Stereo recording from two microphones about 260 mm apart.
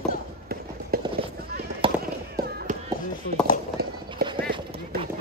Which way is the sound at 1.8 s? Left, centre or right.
Centre.